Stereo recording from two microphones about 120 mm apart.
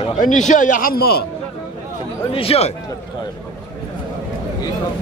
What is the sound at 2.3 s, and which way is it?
Speech, 55° left (ahead or behind).